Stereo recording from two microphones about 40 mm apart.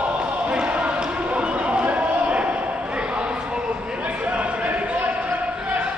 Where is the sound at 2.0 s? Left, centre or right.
Right.